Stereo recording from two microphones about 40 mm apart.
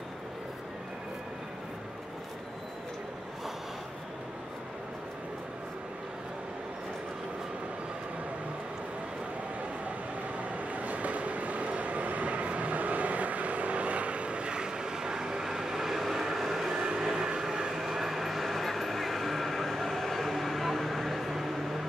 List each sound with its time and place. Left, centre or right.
10.5 s train: right; by 16.7 s centre
16.7 s vehicle: centre